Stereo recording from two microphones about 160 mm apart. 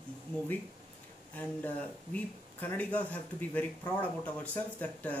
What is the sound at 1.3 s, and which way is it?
Speech, 10° left (ahead or behind).